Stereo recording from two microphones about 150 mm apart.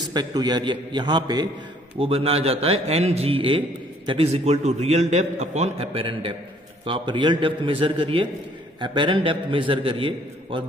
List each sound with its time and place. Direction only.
0.1 s a man's voice: 25° right (ahead or behind)
2.0 s a man's voice: 40° right (ahead or behind)